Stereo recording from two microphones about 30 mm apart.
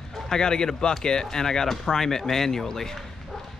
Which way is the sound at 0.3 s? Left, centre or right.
Left.